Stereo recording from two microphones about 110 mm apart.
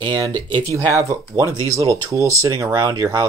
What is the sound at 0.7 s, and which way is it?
Speech, 30° right (ahead or behind).